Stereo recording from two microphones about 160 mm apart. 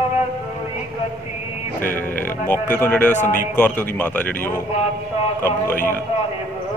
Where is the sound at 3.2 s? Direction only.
55° left (ahead or behind).